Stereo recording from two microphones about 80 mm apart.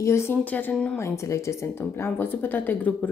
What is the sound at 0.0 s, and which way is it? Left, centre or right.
Speech, left.